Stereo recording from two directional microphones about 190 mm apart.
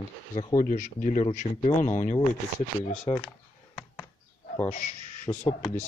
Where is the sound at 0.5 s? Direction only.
45° left (ahead or behind).